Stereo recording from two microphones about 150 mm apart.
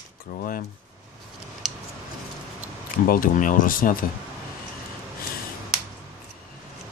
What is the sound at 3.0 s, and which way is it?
Speech, 70° left (ahead or behind).